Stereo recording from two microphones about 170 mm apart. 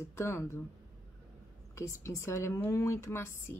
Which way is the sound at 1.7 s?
15° left (ahead or behind).